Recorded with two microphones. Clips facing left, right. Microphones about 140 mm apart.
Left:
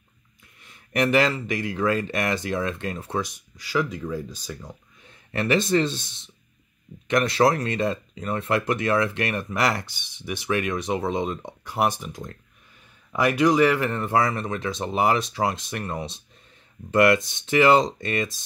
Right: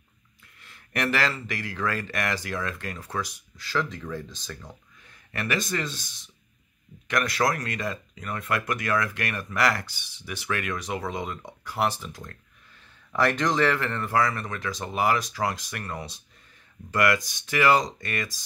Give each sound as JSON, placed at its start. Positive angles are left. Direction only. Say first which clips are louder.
{"t": 0.6, "sound": "speech", "louder": "left 6 dB", "side_deg": 20}
{"t": 5.0, "sound": "speech", "louder": "left 6 dB", "side_deg": 25}